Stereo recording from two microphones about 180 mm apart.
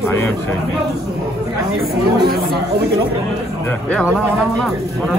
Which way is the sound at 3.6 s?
10° left (ahead or behind).